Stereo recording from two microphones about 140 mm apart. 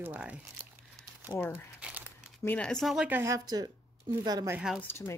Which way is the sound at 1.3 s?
35° left (ahead or behind).